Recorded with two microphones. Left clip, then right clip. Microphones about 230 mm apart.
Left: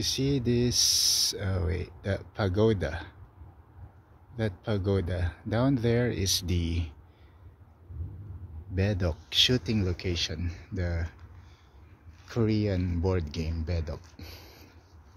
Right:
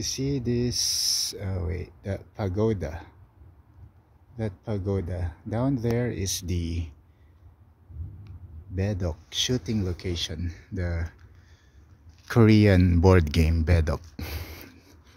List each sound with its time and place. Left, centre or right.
0.0 s speech: centre
4.4 s speech: centre
8.7 s speech: centre
12.3 s speech: right